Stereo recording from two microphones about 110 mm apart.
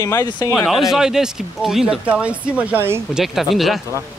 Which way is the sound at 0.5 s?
Centre (ahead or behind).